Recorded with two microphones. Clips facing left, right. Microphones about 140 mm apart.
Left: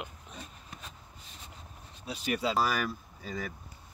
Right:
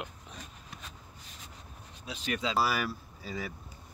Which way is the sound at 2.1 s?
10° left (ahead or behind).